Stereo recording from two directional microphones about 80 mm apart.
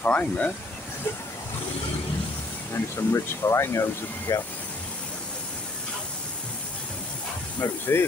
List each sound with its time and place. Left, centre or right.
0.0 s speech: centre
2.7 s speech: left
4.3 s speech: left
7.5 s speech: left